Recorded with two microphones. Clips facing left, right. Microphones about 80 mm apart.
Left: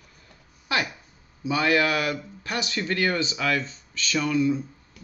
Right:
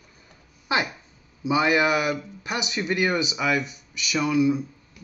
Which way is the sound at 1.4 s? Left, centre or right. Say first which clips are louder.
Right 2 dB; centre.